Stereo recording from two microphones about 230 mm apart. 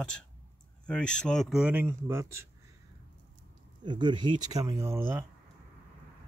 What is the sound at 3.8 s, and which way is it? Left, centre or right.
Speech, centre.